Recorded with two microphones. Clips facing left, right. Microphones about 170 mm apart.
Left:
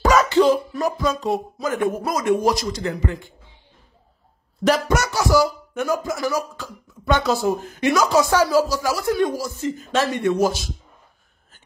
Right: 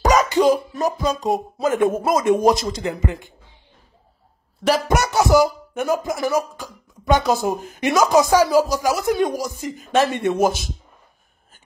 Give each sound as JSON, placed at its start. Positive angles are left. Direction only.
{"t": 0.2, "sound": "a sound", "side_deg": -15}
{"t": 0.7, "sound": "speech", "side_deg": -20}
{"t": 4.8, "sound": "music", "side_deg": -20}
{"t": 6.2, "sound": "speech", "side_deg": -20}